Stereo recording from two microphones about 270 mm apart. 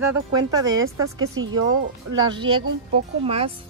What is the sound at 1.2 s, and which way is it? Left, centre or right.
Speech, right.